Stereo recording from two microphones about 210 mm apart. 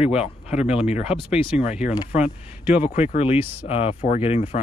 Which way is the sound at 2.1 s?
30° left (ahead or behind).